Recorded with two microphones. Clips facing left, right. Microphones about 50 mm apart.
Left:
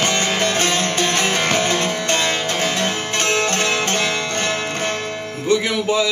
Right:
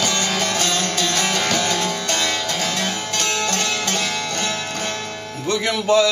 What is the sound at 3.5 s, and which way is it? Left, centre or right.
Music, left.